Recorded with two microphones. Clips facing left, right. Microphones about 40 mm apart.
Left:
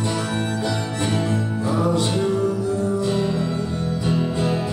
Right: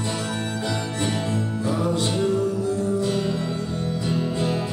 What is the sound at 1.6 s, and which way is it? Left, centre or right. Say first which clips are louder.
Music: left 3 dB; left.